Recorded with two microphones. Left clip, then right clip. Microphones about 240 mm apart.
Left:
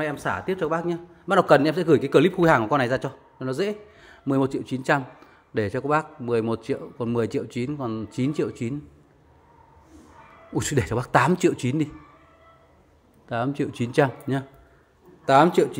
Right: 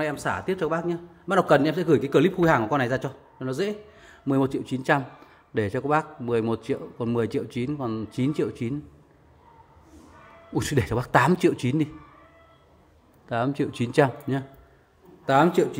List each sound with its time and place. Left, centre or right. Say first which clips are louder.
0.0 s a man's voice: even; centre
0.7 s a man's voice: left 1 dB; centre
10.5 s a man's voice: left 1 dB; centre
13.3 s a man's voice: even; centre
15.2 s a man's voice: left 3 dB; centre